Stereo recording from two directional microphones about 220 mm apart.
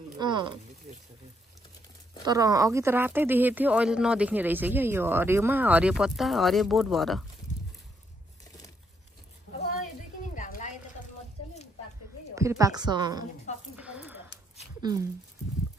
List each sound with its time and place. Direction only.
0.2 s speech: 20° right (ahead or behind)
2.2 s speech: 15° right (ahead or behind); by 7.2 s centre (ahead or behind)
10.3 s a sound: 35° left (ahead or behind)
12.4 s speech: 15° right (ahead or behind)
13.7 s a sound: 5° right (ahead or behind)
14.8 s speech: 15° right (ahead or behind)